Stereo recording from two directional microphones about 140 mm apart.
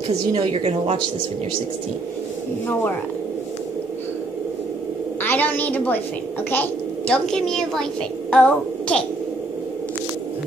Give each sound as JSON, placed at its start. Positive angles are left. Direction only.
{"t": 0.3, "sound": "a woman's voice", "side_deg": -40}
{"t": 5.2, "sound": "a woman's voice", "side_deg": 15}